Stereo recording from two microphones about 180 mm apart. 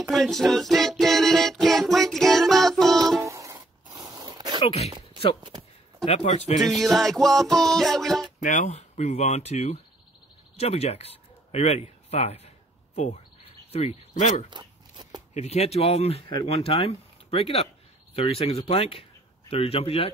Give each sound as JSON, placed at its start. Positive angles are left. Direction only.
{"t": 0.0, "sound": "music", "side_deg": 0}
{"t": 3.2, "sound": "music", "side_deg": -15}
{"t": 3.9, "sound": "a sound", "side_deg": -20}
{"t": 4.6, "sound": "speech", "side_deg": 35}
{"t": 6.0, "sound": "speech", "side_deg": 40}
{"t": 6.5, "sound": "music", "side_deg": 0}
{"t": 8.4, "sound": "speech", "side_deg": 40}
{"t": 14.5, "sound": "a sound", "side_deg": -25}
{"t": 15.3, "sound": "speech", "side_deg": 40}